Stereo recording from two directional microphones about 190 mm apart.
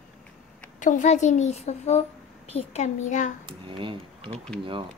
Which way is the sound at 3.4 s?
25° right (ahead or behind).